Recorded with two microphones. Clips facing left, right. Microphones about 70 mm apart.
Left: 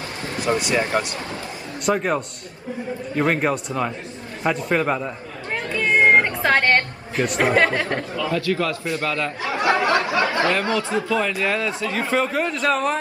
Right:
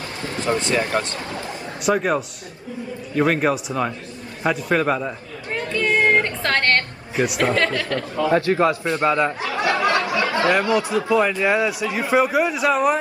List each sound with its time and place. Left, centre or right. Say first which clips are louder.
0.7 s speech: even; left
1.9 s a man's voice: right 1 dB; centre
5.7 s music: left 2 dB; centre
7.2 s a man's voice: right 1 dB; centre
7.4 s speech: left 6 dB; centre
8.2 s a man's voice: right 6 dB; right
9.7 s a sound: left 1 dB; left
10.3 s a sound: right 2 dB; right
11.0 s a man's voice: right 3 dB; right